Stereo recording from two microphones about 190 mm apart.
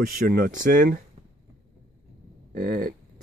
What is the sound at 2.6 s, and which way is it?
Speech, 45° right (ahead or behind).